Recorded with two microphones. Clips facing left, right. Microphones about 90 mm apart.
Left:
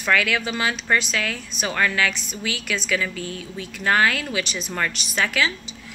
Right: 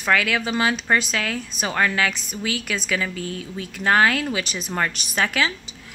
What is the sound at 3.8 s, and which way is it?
Speech, 25° right (ahead or behind).